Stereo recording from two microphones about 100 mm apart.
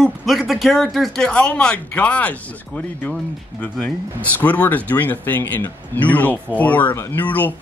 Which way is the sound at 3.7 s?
15° left (ahead or behind).